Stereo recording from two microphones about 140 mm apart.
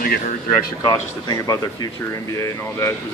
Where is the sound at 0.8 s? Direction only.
30° left (ahead or behind).